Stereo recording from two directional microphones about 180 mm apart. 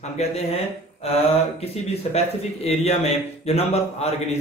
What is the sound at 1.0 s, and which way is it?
A man's voice, 35° left (ahead or behind).